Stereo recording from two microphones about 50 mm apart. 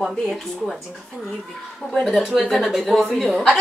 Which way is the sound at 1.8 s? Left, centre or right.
Left.